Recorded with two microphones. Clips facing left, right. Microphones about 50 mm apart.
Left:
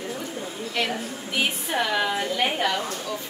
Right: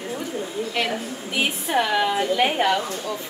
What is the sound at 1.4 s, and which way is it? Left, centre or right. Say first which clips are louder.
Speech: right 3 dB; centre.